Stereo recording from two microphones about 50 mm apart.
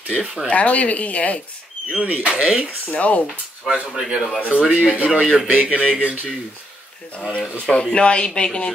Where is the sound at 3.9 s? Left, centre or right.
Centre.